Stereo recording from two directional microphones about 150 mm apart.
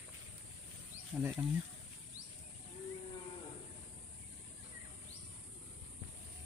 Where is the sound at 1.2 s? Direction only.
15° right (ahead or behind).